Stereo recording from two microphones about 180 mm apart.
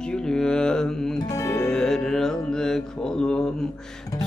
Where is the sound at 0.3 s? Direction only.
5° left (ahead or behind).